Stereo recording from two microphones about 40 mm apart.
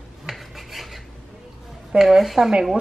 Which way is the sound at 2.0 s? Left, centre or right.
Centre.